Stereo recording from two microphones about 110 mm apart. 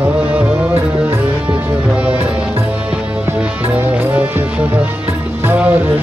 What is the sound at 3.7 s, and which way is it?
Music, 15° right (ahead or behind).